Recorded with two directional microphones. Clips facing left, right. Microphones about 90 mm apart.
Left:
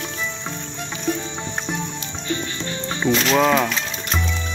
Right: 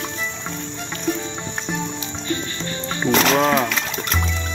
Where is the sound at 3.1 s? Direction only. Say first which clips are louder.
Right 2 dB; 65° right (ahead or behind).